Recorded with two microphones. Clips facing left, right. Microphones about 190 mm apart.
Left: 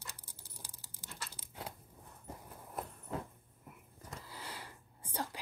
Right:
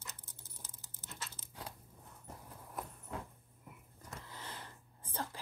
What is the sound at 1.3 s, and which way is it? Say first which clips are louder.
Crunch: left 2 dB; 20° left (ahead or behind).